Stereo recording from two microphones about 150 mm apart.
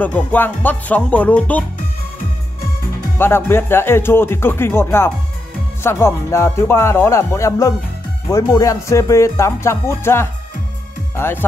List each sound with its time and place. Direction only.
0.0 s speech: 10° left (ahead or behind)
3.2 s speech: 15° left (ahead or behind)